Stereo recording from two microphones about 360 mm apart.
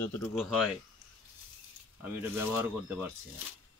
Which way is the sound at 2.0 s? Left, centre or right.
Centre.